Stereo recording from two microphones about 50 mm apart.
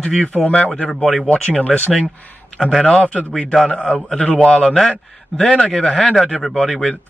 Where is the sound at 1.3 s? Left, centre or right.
Left.